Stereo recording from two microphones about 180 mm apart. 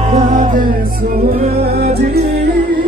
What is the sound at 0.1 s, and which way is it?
Music, 40° right (ahead or behind).